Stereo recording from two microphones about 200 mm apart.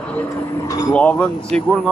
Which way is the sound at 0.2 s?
15° left (ahead or behind).